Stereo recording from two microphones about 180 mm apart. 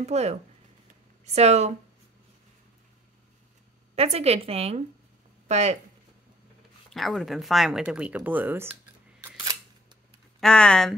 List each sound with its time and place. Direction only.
0.0 s a woman's voice: 35° right (ahead or behind)
3.9 s a woman's voice: 35° right (ahead or behind)
6.9 s speech: centre (ahead or behind)
9.2 s scissors: 20° right (ahead or behind)
10.4 s speech: 5° left (ahead or behind)